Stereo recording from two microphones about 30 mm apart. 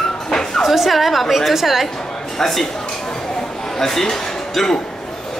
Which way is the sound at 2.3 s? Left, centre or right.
Centre.